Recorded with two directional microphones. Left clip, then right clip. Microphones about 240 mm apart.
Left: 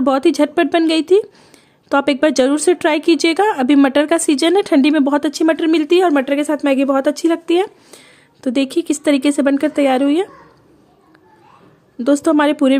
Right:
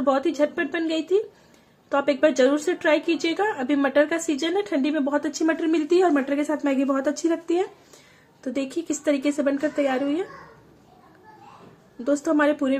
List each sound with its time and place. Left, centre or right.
0.0 s speech: left
12.0 s a woman's voice: left